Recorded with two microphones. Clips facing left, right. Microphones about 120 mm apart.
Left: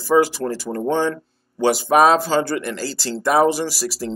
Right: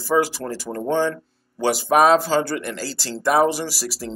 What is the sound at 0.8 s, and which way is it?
Speech, 20° left (ahead or behind).